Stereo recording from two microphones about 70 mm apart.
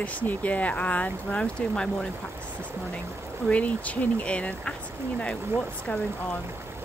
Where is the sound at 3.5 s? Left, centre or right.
Centre.